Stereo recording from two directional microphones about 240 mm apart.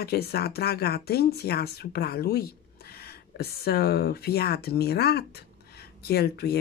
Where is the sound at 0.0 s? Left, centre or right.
Left.